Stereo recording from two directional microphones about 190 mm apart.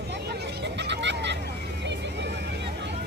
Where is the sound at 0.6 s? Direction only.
65° right (ahead or behind).